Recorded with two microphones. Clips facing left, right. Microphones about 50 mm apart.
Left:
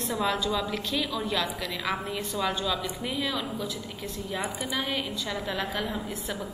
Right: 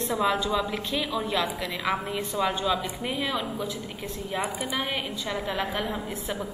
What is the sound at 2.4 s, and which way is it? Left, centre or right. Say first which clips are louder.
Speech: right 3 dB; right.